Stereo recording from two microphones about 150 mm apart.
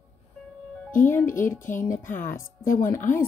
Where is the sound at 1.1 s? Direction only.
15° left (ahead or behind).